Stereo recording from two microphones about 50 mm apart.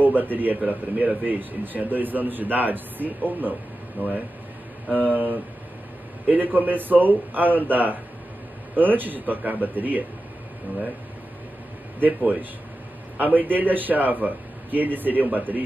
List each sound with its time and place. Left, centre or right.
0.1 s speech: right
12.0 s speech: right